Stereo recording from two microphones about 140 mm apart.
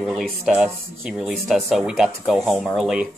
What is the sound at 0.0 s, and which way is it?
Speech, 5° right (ahead or behind).